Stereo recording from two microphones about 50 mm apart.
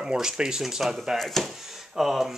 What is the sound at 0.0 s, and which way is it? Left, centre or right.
Speech, centre.